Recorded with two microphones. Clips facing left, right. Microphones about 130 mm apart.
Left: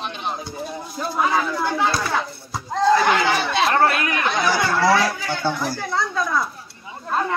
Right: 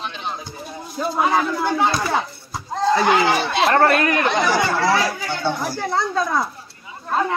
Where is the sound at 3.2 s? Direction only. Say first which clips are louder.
Right 2 dB; 40° right (ahead or behind).